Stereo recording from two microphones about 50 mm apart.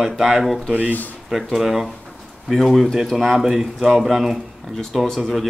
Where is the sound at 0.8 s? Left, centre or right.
Left.